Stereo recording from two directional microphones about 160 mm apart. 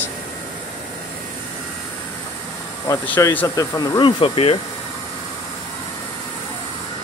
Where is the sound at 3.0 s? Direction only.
10° left (ahead or behind).